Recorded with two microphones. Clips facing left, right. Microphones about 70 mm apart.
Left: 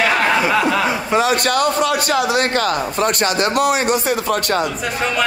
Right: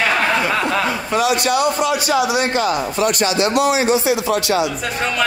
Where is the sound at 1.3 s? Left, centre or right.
Left.